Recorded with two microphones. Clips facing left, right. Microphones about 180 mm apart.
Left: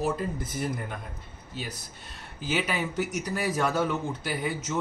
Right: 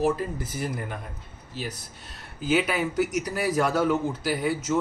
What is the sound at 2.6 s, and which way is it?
A man's voice, 10° right (ahead or behind).